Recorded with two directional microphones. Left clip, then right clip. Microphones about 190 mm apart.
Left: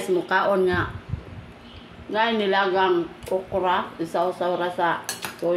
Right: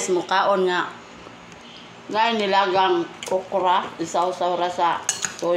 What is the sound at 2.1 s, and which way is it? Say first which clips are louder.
Speech: right 2 dB; centre (ahead or behind).